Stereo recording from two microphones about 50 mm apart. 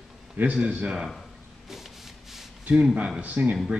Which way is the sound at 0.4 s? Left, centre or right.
Right.